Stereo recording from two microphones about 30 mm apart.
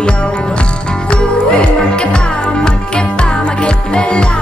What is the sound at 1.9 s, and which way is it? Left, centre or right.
Music, left.